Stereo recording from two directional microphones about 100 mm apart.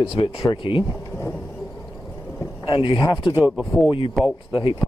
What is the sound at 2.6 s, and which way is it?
Speech, 55° left (ahead or behind).